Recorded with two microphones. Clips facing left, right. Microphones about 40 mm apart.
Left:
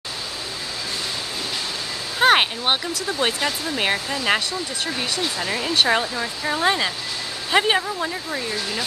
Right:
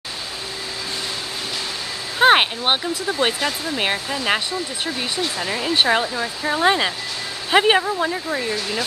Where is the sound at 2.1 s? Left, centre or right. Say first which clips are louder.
Right 2 dB; centre.